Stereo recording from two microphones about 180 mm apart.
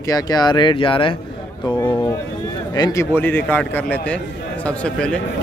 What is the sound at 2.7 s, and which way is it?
A man's voice, 20° left (ahead or behind).